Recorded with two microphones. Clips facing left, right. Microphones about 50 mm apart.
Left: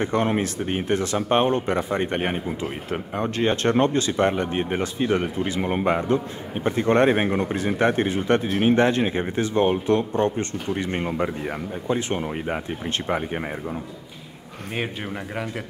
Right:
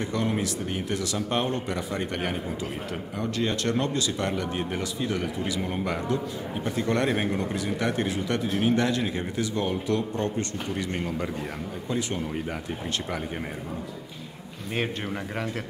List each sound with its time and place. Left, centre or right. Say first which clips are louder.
0.0 s speech: left 5 dB; left